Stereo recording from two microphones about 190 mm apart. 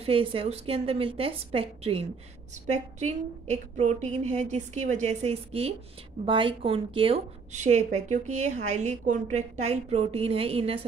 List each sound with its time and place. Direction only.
0.0 s a woman's voice: 30° right (ahead or behind)